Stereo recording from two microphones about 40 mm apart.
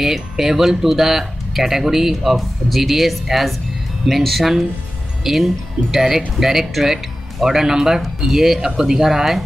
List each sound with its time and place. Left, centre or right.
0.0 s speech: centre